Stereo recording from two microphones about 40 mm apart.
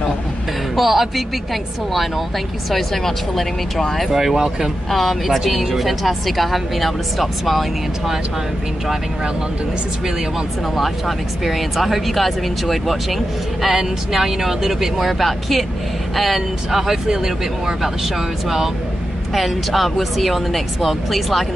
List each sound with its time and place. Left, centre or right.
0.7 s speech: centre
4.1 s speech: centre
10.8 s speech: centre
19.3 s speech: centre